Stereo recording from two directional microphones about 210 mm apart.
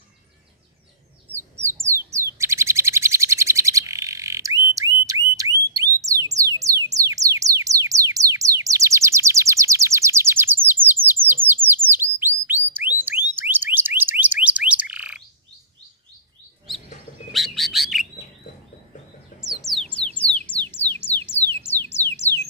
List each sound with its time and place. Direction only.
1.3 s bird: 10° right (ahead or behind)
4.7 s alarm: 15° right (ahead or behind)
5.8 s music: 15° right (ahead or behind)
11.6 s bird: 10° right (ahead or behind)
17.3 s bird: centre (ahead or behind)
19.4 s bird: centre (ahead or behind)
20.2 s a sound: 5° left (ahead or behind)